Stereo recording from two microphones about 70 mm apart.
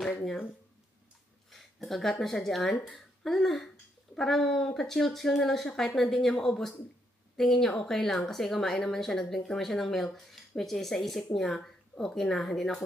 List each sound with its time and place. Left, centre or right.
1.5 s a woman's voice: centre